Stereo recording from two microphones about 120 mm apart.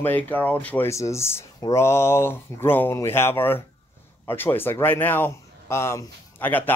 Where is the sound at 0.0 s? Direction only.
15° left (ahead or behind).